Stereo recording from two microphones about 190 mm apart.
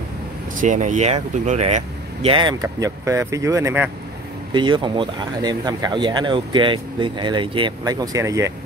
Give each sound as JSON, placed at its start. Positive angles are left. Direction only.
{"t": 0.6, "sound": "speech", "side_deg": -40}
{"t": 4.6, "sound": "speech", "side_deg": -25}